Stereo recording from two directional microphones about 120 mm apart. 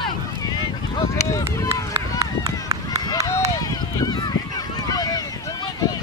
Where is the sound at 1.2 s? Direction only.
25° left (ahead or behind).